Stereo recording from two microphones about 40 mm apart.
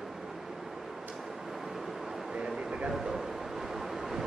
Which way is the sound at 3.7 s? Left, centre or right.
Centre.